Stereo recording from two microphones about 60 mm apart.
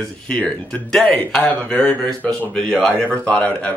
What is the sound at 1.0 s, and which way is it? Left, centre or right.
Speech, left.